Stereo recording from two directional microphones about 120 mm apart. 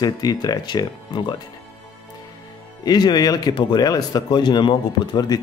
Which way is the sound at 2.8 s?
35° left (ahead or behind).